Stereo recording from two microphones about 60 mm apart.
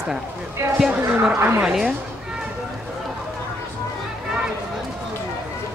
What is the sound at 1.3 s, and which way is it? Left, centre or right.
Speech, right.